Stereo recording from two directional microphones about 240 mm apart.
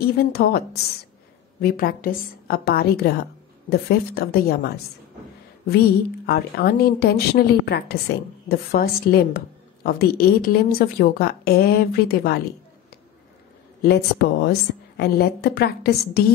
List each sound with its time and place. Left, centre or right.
0.0 s a woman's voice: left
6.2 s a woman's voice: left
13.8 s a woman's voice: left